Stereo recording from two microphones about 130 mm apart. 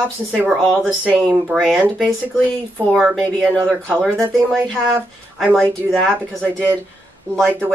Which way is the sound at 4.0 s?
Centre (ahead or behind).